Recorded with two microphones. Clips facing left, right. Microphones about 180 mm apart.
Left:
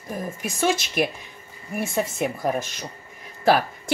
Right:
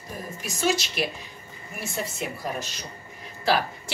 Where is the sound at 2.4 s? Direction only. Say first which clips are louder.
Left 7 dB; 50° left (ahead or behind).